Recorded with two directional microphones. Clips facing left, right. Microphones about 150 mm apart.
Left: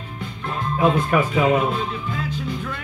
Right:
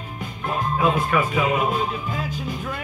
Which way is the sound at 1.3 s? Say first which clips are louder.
Left 4 dB; 30° left (ahead or behind).